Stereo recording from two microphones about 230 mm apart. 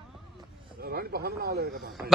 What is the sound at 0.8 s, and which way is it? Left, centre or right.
Speech, right.